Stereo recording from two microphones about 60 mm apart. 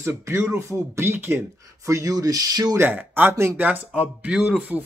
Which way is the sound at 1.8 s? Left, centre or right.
Right.